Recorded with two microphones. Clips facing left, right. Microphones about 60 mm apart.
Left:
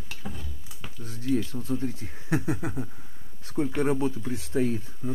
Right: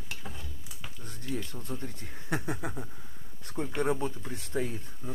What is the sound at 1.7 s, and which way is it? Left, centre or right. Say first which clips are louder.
Speech: left 12 dB; centre.